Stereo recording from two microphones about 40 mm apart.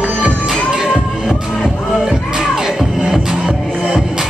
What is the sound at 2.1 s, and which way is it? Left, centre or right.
Music, centre.